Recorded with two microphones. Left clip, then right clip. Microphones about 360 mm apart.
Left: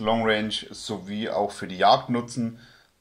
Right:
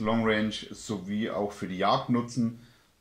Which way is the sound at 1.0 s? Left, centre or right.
Left.